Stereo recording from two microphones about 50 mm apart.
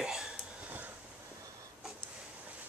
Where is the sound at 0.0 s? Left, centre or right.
Centre.